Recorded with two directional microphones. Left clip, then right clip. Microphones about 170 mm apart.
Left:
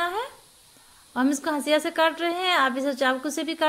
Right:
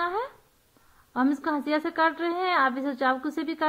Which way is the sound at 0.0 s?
15° left (ahead or behind).